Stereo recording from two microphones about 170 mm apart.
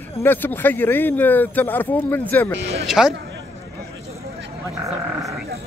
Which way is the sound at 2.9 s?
5° right (ahead or behind).